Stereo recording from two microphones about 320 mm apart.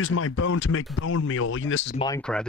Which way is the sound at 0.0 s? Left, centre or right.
Left.